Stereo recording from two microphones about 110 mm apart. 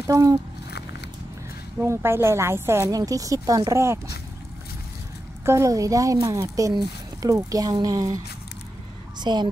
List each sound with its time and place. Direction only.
0.0 s speech: 30° right (ahead or behind)
1.8 s a woman's voice: 20° right (ahead or behind)
5.4 s a woman's voice: 25° right (ahead or behind)
9.2 s speech: 40° right (ahead or behind)